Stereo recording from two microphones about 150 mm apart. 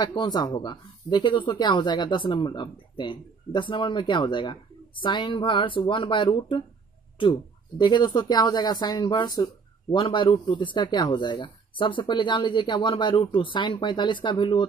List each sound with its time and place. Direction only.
0.0 s speech: 30° left (ahead or behind)
9.4 s a sound: 20° left (ahead or behind)
10.0 s speech: 35° left (ahead or behind)